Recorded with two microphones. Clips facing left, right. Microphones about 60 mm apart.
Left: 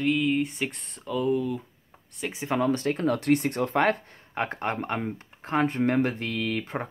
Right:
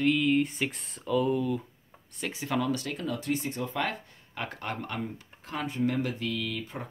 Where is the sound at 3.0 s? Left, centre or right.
Left.